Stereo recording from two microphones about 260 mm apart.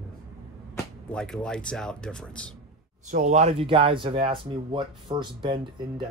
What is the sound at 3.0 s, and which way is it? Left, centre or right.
Speech, right.